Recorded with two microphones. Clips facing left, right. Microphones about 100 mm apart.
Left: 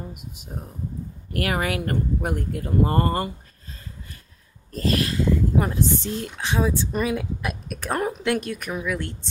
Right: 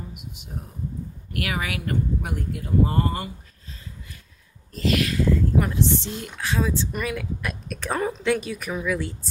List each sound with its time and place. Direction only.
1.3 s speech: 45° left (ahead or behind)
4.7 s a sound: 40° left (ahead or behind)
5.8 s speech: 45° left (ahead or behind)
6.2 s a woman's voice: 20° left (ahead or behind)
7.7 s a woman's voice: 10° left (ahead or behind)